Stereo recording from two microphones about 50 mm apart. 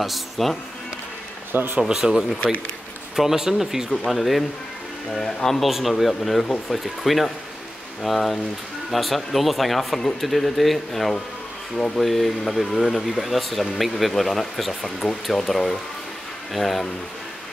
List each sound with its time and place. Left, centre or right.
0.0 s speech: centre
1.5 s speech: right
1.8 s speech: centre
5.7 s speech: centre